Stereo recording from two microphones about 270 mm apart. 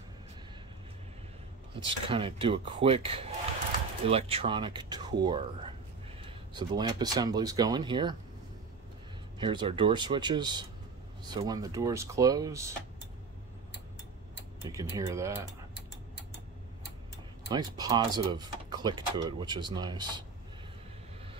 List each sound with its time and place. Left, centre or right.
1.9 s speech: centre
9.4 s speech: centre
14.6 s speech: centre
17.5 s speech: centre